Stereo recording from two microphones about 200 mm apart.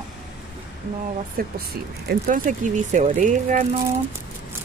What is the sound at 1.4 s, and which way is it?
Speech, 50° right (ahead or behind).